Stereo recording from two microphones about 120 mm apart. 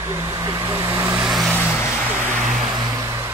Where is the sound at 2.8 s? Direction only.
25° right (ahead or behind).